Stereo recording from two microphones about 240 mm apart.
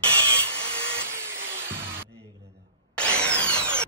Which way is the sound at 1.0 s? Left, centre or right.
Centre.